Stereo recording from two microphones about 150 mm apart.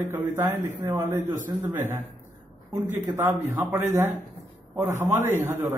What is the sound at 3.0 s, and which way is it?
Speech, 15° right (ahead or behind).